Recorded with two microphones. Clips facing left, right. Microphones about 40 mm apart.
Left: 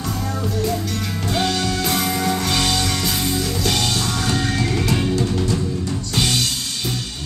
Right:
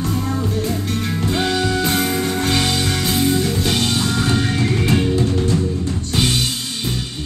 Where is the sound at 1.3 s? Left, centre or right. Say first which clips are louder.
Right 1 dB; centre.